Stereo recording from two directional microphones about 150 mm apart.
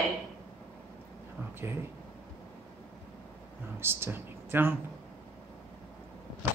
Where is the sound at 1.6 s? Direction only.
15° right (ahead or behind).